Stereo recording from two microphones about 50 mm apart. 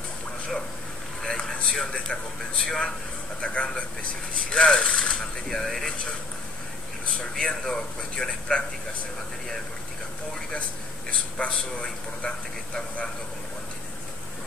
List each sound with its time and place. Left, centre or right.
1.2 s a sound: centre
2.6 s a man's voice: centre
7.3 s speech: centre
11.1 s a man's voice: left